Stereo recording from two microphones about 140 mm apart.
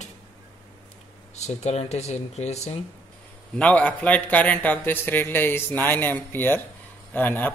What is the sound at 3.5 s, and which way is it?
A man's voice, 10° left (ahead or behind).